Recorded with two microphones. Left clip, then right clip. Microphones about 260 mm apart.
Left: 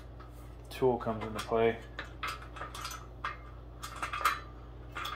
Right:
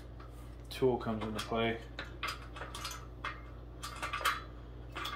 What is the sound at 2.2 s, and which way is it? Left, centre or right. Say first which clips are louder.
Cutlery: left 2 dB; centre.